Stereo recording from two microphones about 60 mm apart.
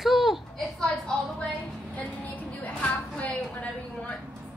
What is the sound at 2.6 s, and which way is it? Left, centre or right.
A woman's voice, left.